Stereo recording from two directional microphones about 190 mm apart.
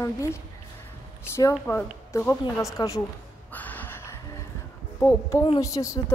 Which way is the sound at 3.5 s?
10° left (ahead or behind).